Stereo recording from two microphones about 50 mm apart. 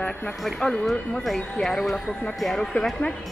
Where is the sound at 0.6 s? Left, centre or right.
Centre.